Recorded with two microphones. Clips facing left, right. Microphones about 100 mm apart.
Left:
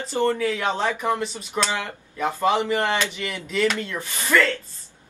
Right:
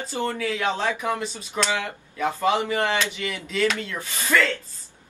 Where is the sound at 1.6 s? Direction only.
15° right (ahead or behind).